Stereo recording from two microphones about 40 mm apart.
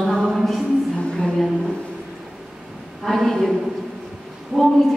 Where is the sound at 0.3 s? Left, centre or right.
Centre.